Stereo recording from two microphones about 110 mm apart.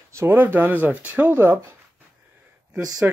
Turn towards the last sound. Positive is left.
turn(degrees=-35)  # may be behind; listen again after turning